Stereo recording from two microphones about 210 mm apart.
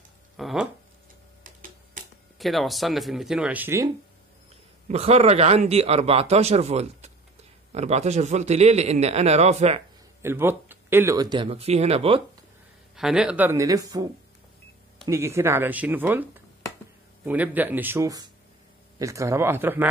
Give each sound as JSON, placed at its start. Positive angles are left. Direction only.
{"t": 0.4, "sound": "speech", "side_deg": 0}
{"t": 1.4, "sound": "tick-tock", "side_deg": -40}
{"t": 2.3, "sound": "speech", "side_deg": 0}
{"t": 4.8, "sound": "a man's voice", "side_deg": -30}
{"t": 10.2, "sound": "speech", "side_deg": -10}
{"t": 12.9, "sound": "speech", "side_deg": -5}
{"t": 15.0, "sound": "speech", "side_deg": -15}